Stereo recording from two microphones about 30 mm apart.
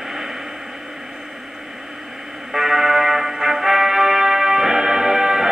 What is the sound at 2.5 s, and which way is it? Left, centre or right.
Music, centre.